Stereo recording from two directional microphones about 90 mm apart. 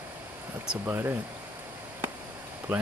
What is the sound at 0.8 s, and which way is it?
Speech, 25° right (ahead or behind).